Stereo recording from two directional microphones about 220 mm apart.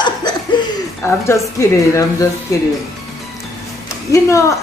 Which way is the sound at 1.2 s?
15° left (ahead or behind).